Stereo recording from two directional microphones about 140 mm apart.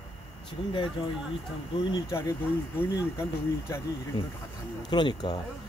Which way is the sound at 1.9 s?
20° left (ahead or behind).